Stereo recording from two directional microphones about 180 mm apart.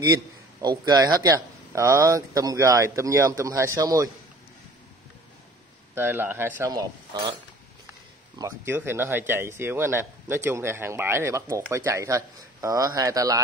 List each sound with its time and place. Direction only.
0.1 s speech: 20° right (ahead or behind)
5.9 s speech: 10° right (ahead or behind)
8.4 s speech: 15° right (ahead or behind)